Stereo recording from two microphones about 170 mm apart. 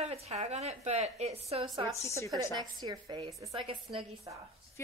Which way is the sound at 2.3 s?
25° right (ahead or behind).